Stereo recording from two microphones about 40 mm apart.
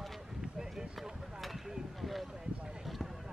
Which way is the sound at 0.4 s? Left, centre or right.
Centre.